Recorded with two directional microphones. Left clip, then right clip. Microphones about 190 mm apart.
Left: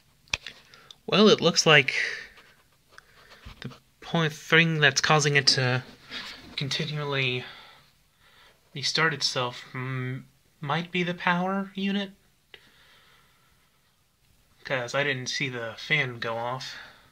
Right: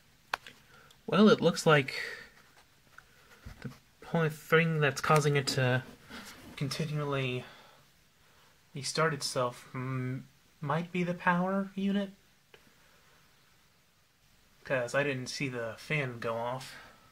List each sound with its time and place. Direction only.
1.0 s speech: 5° left (ahead or behind)
4.0 s speech: 15° left (ahead or behind)
8.7 s speech: 5° left (ahead or behind)
14.6 s speech: 5° left (ahead or behind)